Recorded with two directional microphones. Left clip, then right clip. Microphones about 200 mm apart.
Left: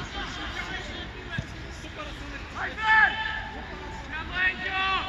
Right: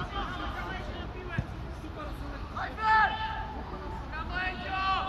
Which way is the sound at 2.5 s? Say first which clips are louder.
Left 4 dB; 30° right (ahead or behind).